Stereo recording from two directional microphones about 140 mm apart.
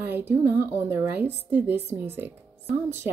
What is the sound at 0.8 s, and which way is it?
A woman's voice, 15° right (ahead or behind).